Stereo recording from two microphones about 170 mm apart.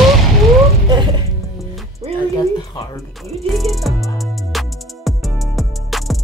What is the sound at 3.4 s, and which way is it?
Music, centre (ahead or behind).